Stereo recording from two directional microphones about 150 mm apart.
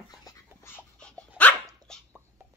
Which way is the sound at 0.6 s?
10° left (ahead or behind).